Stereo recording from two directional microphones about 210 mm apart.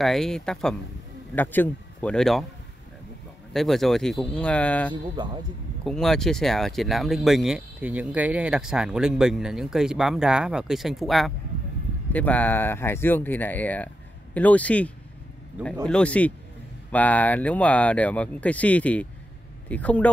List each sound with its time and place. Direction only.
0.0 s speech: centre (ahead or behind)
3.5 s speech: centre (ahead or behind)
5.1 s speech: 20° right (ahead or behind)
5.9 s speech: centre (ahead or behind)
15.6 s speech: 5° right (ahead or behind)
15.9 s speech: 5° left (ahead or behind)